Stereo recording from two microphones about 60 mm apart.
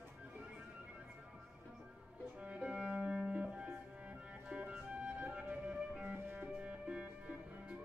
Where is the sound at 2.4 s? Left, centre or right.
Centre.